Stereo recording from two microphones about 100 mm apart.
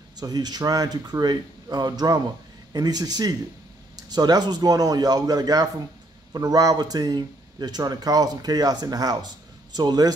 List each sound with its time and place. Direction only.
0.2 s speech: 40° right (ahead or behind)